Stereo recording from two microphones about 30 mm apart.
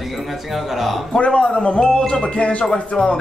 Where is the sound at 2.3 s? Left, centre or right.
Left.